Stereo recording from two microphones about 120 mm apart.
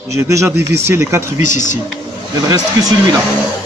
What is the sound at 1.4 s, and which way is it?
Speech, 90° left.